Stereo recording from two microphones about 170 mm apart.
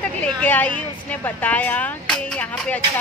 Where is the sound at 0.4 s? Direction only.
10° left (ahead or behind).